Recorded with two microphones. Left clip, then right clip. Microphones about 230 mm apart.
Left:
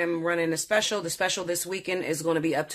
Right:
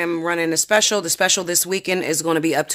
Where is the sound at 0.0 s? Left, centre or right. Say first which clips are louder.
Right 5 dB; right.